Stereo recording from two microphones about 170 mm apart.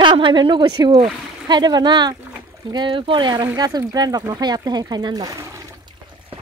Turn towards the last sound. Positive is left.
turn(degrees=-20)  # may be behind; listen again after turning